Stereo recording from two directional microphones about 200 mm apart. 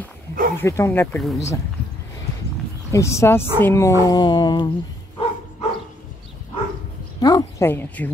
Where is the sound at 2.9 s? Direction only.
15° left (ahead or behind).